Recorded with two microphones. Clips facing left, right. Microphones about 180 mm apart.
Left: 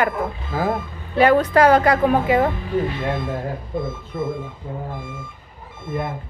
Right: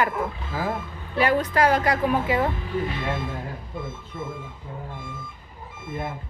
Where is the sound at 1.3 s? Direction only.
65° left (ahead or behind).